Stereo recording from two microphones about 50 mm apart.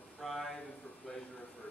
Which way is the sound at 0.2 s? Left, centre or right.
Centre.